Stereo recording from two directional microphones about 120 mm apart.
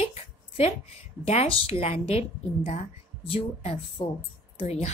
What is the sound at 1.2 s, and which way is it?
A woman's voice, 55° left (ahead or behind).